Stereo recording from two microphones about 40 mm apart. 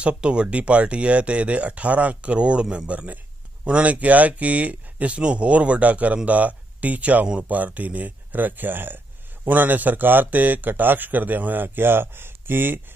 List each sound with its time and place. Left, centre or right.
0.2 s a man's voice: right